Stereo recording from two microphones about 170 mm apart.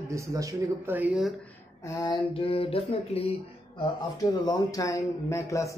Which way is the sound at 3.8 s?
25° left (ahead or behind).